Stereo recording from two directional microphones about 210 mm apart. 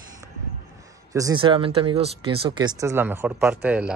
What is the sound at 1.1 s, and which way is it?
Speech, 20° right (ahead or behind).